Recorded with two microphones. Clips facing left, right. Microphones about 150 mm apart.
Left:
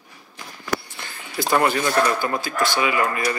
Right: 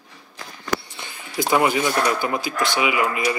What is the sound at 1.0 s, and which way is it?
Speech, 15° right (ahead or behind).